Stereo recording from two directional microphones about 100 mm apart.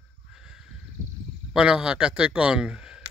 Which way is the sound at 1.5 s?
10° right (ahead or behind).